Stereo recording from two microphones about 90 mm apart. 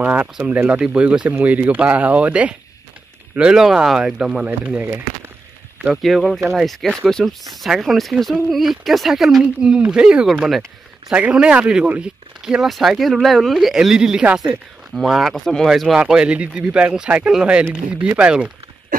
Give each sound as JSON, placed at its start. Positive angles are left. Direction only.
{"t": 0.0, "sound": "speech", "side_deg": -15}
{"t": 4.5, "sound": "speech", "side_deg": -20}
{"t": 6.0, "sound": "speech", "side_deg": 0}